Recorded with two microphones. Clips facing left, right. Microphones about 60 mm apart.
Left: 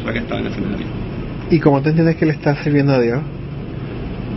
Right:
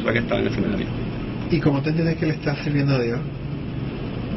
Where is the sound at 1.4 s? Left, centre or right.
Left.